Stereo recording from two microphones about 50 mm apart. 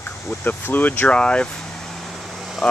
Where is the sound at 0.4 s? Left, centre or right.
Left.